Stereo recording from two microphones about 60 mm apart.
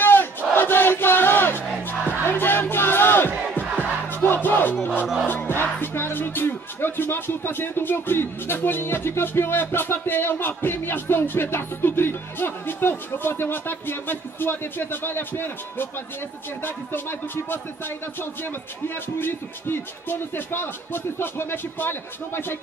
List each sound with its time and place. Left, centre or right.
0.0 s battle cry: left
4.1 s crowd: left
5.0 s crowd: centre
5.5 s speech: left